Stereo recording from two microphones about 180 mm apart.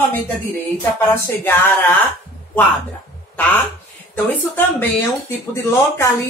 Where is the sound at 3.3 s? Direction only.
10° left (ahead or behind).